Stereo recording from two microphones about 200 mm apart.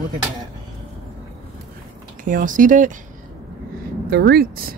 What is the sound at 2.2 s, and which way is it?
Speech, 45° right (ahead or behind).